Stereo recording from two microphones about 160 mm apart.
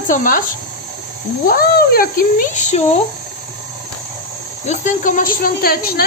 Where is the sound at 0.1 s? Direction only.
60° left (ahead or behind).